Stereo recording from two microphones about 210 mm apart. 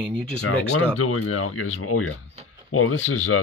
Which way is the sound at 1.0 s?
90° left.